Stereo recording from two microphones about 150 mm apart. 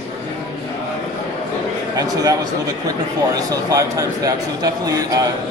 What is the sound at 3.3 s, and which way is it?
A man's voice, 25° right (ahead or behind).